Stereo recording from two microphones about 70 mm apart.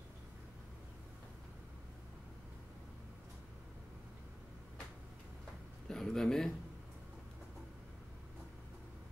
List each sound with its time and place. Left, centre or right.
5.9 s speech: centre